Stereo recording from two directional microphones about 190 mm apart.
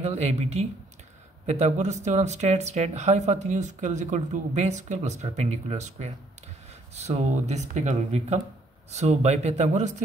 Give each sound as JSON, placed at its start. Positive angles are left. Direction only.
{"t": 0.0, "sound": "speech", "side_deg": -35}